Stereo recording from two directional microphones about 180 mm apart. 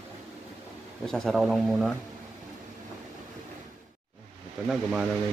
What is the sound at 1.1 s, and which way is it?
Speech, 5° left (ahead or behind).